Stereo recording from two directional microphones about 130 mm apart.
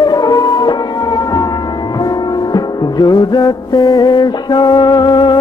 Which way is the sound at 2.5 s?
35° left (ahead or behind).